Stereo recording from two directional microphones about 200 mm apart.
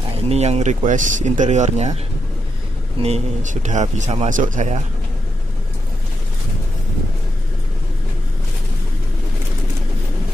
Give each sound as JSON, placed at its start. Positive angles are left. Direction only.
{"t": 0.2, "sound": "a man's voice", "side_deg": -30}
{"t": 3.0, "sound": "a man's voice", "side_deg": -35}